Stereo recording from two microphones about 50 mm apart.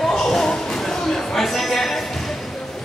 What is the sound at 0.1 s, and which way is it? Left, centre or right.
Basketball bounce, centre.